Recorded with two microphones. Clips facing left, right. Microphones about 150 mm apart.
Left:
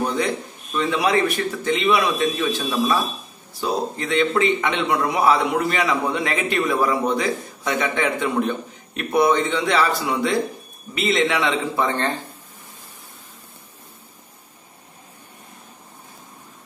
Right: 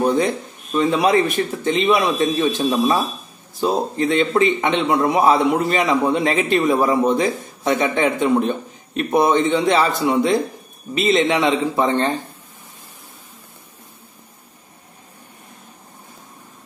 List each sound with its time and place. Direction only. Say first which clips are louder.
0.7 s a man's voice: right 4 dB; 25° right (ahead or behind)